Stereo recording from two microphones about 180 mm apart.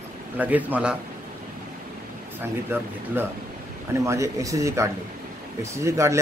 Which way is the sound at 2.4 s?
10° right (ahead or behind).